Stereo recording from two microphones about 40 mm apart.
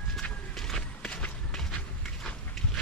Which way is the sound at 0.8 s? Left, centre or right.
Left.